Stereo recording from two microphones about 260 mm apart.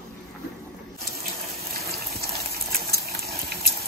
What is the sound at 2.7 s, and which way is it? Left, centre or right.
Water, right.